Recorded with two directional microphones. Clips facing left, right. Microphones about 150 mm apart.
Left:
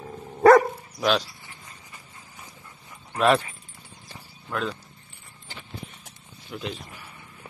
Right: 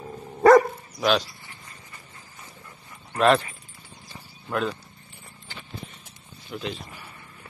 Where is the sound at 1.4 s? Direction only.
15° left (ahead or behind).